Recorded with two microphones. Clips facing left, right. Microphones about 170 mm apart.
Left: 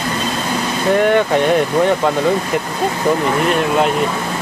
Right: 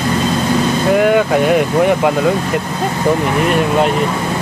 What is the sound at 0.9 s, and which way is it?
Speech, 5° right (ahead or behind).